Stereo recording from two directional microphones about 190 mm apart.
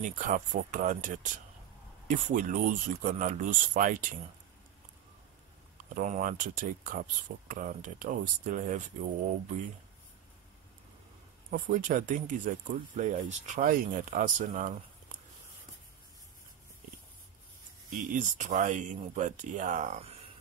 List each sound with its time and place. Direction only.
0.0 s speech: 40° right (ahead or behind)
5.9 s speech: 45° right (ahead or behind)
11.5 s speech: 45° right (ahead or behind)
17.8 s speech: 40° right (ahead or behind)